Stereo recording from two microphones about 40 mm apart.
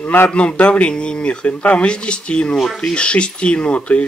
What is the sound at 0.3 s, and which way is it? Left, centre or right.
Speech, left.